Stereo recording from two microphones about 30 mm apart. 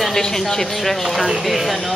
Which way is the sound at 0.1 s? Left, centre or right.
Centre.